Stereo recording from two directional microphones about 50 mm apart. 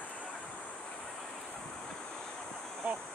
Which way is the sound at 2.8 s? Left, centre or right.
Right.